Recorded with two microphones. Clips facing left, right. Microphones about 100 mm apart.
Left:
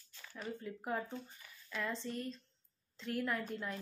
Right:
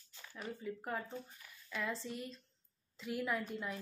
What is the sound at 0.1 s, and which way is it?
Speech, 10° right (ahead or behind).